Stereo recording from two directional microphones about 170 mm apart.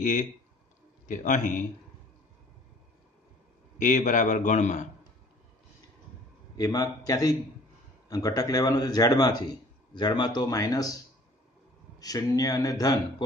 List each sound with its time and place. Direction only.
0.0 s a man's voice: 45° left (ahead or behind)
3.7 s a man's voice: 45° left (ahead or behind)
6.5 s a man's voice: 20° left (ahead or behind)
12.0 s a man's voice: 20° left (ahead or behind)